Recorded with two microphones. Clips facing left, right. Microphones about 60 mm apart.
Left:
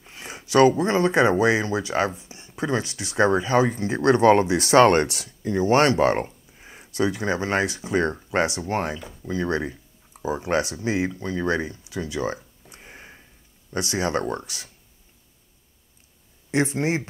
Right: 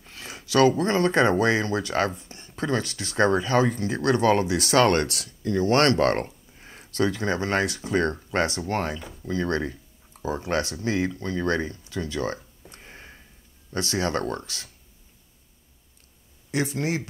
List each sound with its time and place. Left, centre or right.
0.0 s speech: left
6.2 s a sound: centre
7.7 s speech: centre
16.4 s speech: left